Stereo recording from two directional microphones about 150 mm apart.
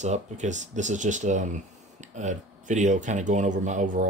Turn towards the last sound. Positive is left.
turn(degrees=-55)  # may be behind; listen again after turning